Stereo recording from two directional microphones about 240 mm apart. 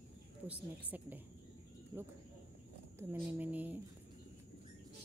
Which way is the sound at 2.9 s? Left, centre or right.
Centre.